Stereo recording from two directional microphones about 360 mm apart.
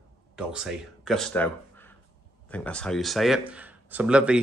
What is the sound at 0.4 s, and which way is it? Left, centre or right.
Speech, centre.